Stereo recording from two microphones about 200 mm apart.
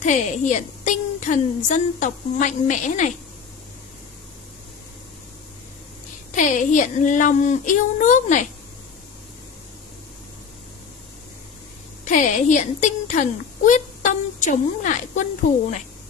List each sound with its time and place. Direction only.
0.0 s a woman's voice: 35° left (ahead or behind)
6.3 s a woman's voice: 40° left (ahead or behind)
12.0 s a woman's voice: 40° left (ahead or behind)